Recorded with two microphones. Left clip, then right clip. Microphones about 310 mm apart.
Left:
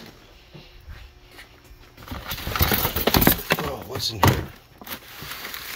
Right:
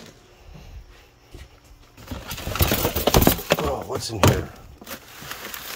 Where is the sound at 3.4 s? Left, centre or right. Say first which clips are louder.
Right 3 dB; centre.